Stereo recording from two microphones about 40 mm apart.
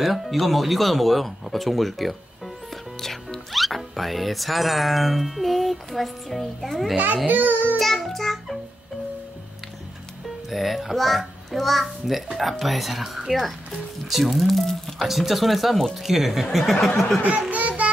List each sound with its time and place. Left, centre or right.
0.0 s speech: centre
3.5 s music: centre
7.2 s a child's voice: right
7.8 s music: centre
10.5 s music: centre
17.5 s a sound: right